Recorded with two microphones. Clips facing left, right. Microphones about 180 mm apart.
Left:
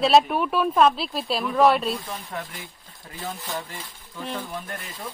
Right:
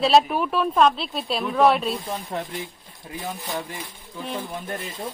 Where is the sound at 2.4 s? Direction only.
20° right (ahead or behind).